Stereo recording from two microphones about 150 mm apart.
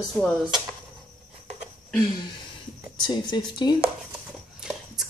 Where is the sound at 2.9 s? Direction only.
30° left (ahead or behind).